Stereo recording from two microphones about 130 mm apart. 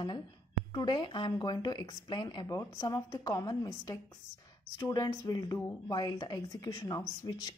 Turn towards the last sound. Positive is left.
turn(degrees=30)  # may be behind; listen again after turning